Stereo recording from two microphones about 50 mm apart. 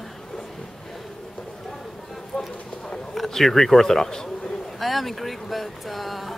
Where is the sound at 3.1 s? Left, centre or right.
Centre.